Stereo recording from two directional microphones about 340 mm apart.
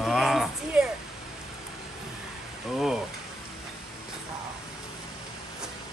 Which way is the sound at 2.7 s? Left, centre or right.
Centre.